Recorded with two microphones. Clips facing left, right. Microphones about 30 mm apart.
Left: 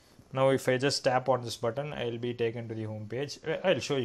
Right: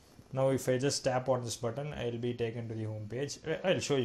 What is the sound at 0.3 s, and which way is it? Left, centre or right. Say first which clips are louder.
Speech: left 4 dB; left.